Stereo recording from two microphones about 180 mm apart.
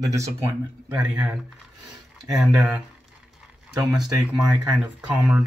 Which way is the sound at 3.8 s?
5° right (ahead or behind).